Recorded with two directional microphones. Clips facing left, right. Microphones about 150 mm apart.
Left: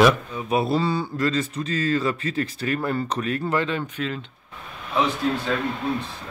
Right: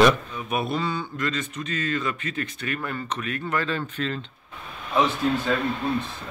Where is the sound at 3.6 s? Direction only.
10° left (ahead or behind).